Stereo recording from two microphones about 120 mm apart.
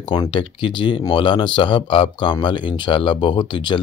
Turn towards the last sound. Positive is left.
turn(degrees=40)  # may be behind; listen again after turning